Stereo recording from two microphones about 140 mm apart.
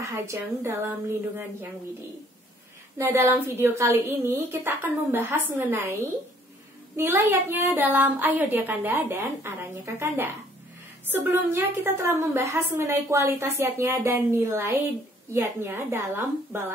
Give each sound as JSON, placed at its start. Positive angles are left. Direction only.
{"t": 0.0, "sound": "a woman's voice", "side_deg": -20}
{"t": 3.0, "sound": "a woman's voice", "side_deg": -15}
{"t": 7.0, "sound": "a woman's voice", "side_deg": -15}